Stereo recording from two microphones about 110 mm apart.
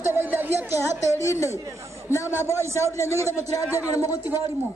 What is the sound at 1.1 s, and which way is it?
Speech, 30° left (ahead or behind).